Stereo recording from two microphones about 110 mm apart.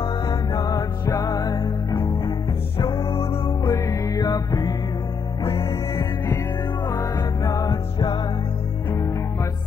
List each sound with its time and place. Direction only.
0.0 s music: 40° left (ahead or behind)
2.9 s music: 55° left (ahead or behind)
3.6 s music: 30° left (ahead or behind)
5.6 s music: 25° left (ahead or behind)
7.7 s music: 45° left (ahead or behind)
8.9 s music: 25° left (ahead or behind)